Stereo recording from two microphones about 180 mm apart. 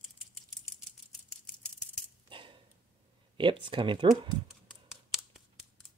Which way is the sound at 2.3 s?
30° right (ahead or behind).